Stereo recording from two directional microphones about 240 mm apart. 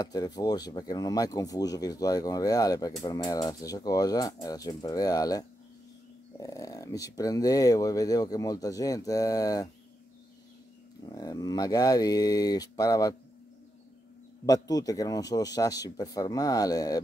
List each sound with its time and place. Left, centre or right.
0.0 s speech: centre
6.4 s speech: centre
11.1 s speech: centre
14.4 s speech: centre